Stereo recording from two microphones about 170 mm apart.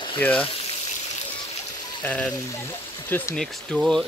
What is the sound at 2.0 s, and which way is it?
Speech, 10° left (ahead or behind).